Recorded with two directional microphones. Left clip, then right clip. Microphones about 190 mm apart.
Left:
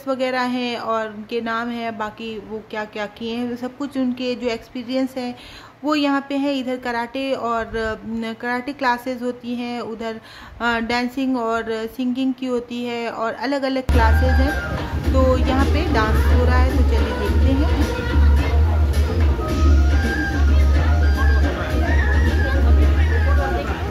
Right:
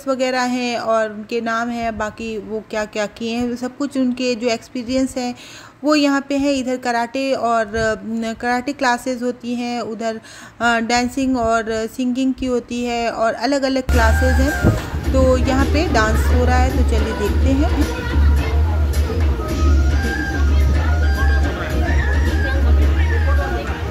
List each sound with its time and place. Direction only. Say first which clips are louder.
0.1 s a woman's voice: right 3 dB; 15° right (ahead or behind)